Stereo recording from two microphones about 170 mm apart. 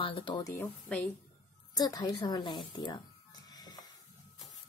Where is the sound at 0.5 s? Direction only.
10° left (ahead or behind).